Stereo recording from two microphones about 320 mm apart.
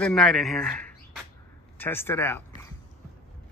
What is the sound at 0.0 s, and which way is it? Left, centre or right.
Speech, centre.